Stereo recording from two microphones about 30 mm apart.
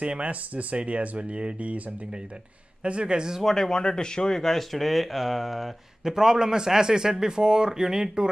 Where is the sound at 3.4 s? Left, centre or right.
Centre.